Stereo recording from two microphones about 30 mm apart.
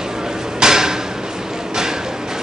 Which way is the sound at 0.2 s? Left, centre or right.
Centre.